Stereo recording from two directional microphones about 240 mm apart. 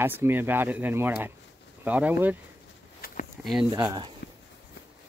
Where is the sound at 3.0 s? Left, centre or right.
Left.